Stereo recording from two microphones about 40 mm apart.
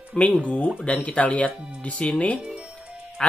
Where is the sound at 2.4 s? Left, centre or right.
Right.